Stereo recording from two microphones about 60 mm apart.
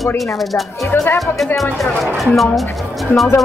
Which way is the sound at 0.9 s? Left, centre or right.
Left.